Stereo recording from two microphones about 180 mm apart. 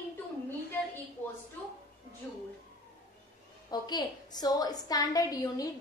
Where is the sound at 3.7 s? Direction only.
25° left (ahead or behind).